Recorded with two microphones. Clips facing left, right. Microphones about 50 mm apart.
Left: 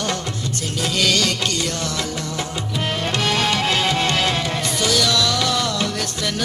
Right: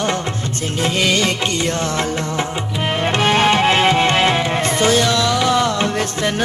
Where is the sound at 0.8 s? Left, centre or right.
Right.